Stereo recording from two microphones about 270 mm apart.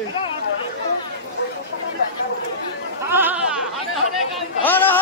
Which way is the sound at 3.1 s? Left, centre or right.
Centre.